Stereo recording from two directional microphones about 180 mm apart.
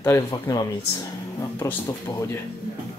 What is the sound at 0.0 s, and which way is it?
Speech, 20° left (ahead or behind).